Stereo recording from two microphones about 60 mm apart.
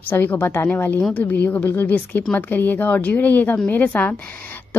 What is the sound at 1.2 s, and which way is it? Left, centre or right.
A woman's voice, left.